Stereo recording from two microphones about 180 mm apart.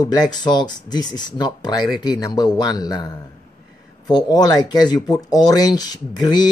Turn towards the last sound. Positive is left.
turn(degrees=25)  # may be behind; listen again after turning